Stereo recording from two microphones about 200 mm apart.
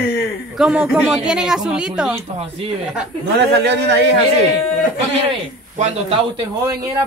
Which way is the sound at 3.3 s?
55° right (ahead or behind).